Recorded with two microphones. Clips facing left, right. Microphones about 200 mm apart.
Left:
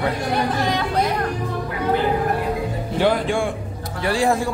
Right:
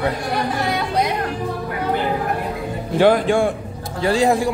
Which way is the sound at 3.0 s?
40° right (ahead or behind).